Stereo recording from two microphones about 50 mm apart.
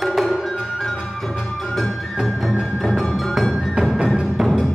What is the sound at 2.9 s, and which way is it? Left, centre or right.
Music, centre.